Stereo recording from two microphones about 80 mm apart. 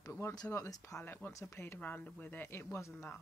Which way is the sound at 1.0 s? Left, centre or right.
Left.